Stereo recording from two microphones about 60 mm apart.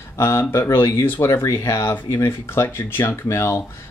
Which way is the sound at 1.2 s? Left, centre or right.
Left.